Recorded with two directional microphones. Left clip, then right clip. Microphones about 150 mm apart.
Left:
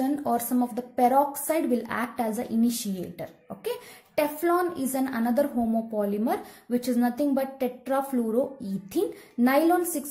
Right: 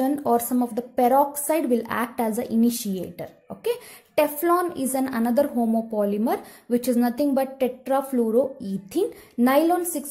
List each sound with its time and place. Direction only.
0.0 s a woman's voice: 30° right (ahead or behind)